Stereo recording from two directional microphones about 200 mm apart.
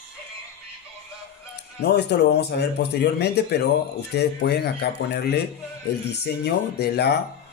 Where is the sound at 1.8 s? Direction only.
55° left (ahead or behind).